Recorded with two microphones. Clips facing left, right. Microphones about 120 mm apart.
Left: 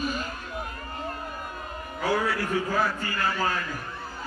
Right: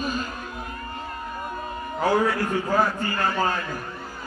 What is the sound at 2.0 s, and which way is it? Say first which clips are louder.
Speech: right 4 dB; 40° right (ahead or behind).